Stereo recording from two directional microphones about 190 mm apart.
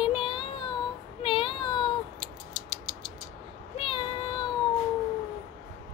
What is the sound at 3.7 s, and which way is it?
Child singing, 30° left (ahead or behind).